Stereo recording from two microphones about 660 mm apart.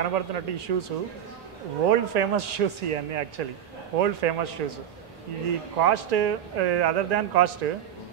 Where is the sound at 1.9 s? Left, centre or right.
Right.